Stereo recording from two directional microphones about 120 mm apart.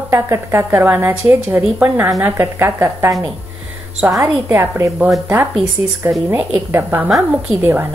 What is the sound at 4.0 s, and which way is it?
Speech, 10° right (ahead or behind).